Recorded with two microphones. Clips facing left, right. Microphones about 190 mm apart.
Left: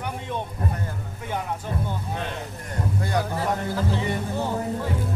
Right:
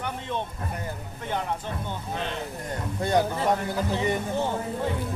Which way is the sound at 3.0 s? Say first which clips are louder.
Right 5 dB; 25° right (ahead or behind).